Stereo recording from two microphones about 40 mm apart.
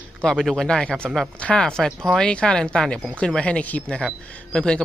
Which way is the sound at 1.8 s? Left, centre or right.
Centre.